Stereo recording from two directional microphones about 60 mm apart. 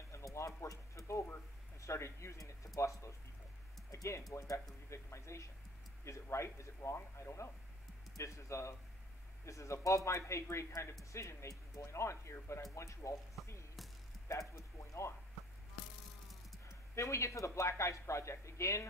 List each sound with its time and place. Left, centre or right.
0.1 s a sound: left
1.8 s speech: left
14.5 s speech: left
16.6 s speech: left